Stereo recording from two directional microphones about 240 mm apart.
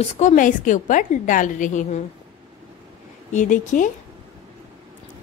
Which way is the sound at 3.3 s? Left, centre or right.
Left.